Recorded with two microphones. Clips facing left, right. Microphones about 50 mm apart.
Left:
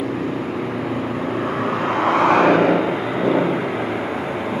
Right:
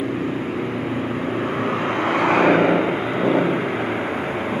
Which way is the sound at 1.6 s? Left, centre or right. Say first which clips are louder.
Left 3 dB; centre.